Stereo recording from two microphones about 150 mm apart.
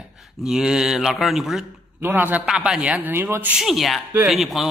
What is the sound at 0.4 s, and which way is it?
Speech, 5° right (ahead or behind).